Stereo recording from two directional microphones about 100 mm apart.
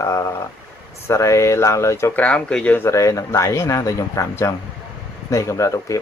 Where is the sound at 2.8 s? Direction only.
30° left (ahead or behind).